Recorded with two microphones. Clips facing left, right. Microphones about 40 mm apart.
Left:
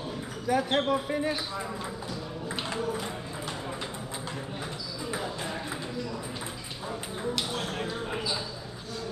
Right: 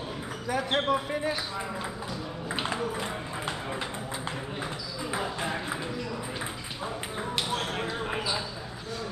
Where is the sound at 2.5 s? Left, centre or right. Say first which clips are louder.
Right 1 dB; centre.